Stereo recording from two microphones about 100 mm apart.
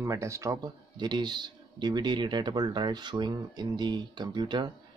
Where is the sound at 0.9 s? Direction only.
45° right (ahead or behind).